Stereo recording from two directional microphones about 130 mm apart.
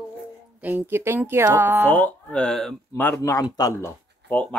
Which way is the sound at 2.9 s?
20° left (ahead or behind).